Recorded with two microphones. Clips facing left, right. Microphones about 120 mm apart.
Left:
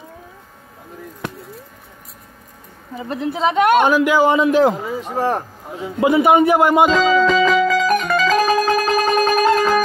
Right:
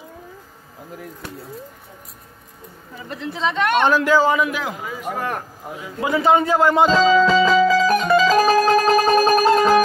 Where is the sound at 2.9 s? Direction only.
40° left (ahead or behind).